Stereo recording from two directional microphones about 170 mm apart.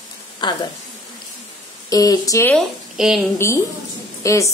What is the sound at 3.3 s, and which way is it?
A woman's voice, 15° left (ahead or behind).